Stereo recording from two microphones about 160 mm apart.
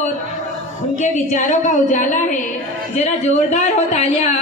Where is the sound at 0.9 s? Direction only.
50° left (ahead or behind).